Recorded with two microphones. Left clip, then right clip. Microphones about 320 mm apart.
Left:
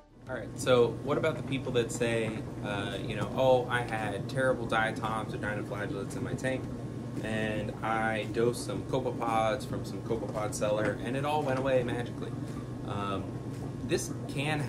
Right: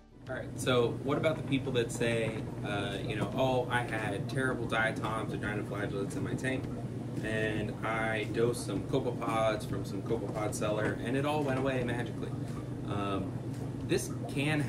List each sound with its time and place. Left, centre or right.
0.7 s speech: centre
7.2 s speech: centre
10.6 s speech: centre